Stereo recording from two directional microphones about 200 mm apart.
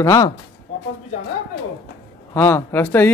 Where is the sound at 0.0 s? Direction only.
15° left (ahead or behind).